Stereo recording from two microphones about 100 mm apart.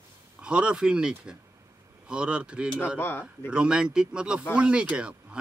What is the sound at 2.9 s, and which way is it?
Speech, 20° left (ahead or behind).